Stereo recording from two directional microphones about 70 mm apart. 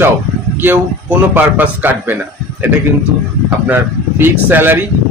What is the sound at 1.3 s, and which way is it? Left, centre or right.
Speech, right.